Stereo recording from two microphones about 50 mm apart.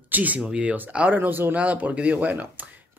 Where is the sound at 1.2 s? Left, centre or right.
Right.